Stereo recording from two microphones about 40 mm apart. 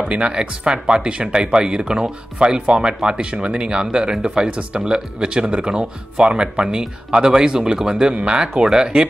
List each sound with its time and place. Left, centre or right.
0.1 s speech: right